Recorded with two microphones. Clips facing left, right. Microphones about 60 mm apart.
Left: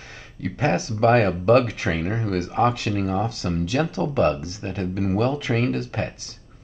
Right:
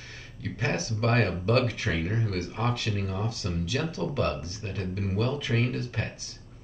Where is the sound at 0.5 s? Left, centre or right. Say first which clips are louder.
Left 7 dB; left.